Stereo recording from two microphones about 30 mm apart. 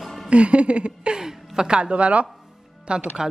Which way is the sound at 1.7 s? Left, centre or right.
Right.